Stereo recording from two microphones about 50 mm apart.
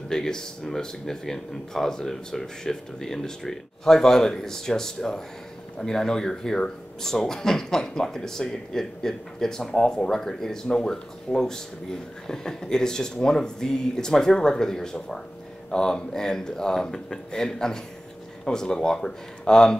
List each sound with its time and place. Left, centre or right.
0.1 s speech: centre